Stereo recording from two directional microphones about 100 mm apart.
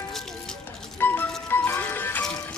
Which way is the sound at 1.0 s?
20° left (ahead or behind).